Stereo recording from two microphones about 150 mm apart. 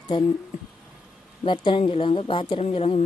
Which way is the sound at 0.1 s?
30° left (ahead or behind).